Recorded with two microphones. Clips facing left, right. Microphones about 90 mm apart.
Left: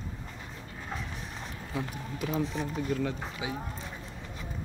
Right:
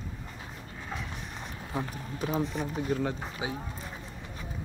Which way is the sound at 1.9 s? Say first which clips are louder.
Right 1 dB; 35° right (ahead or behind).